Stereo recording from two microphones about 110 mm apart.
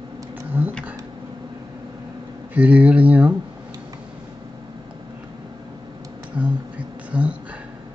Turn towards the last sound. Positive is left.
turn(degrees=-10)  # may be behind; listen again after turning